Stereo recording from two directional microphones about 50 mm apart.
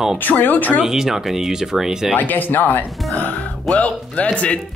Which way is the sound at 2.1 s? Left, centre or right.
Left.